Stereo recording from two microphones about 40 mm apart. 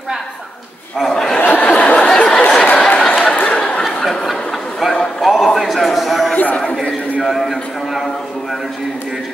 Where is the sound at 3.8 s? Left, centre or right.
Centre.